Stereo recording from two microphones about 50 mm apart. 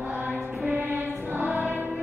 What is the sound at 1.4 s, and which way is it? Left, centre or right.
Music, right.